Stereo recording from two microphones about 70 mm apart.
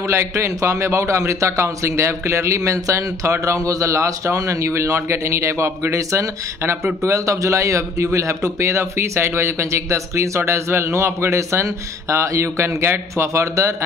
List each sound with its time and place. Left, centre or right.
0.1 s a man's voice: right